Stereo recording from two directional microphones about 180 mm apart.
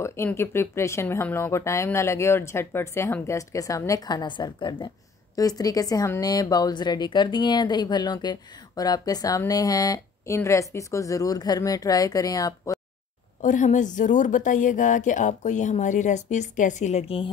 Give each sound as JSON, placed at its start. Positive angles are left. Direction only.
{"t": 0.0, "sound": "speech", "side_deg": 15}
{"t": 13.4, "sound": "a woman's voice", "side_deg": 45}